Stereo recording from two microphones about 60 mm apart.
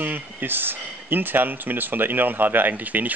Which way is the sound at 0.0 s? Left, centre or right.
Right.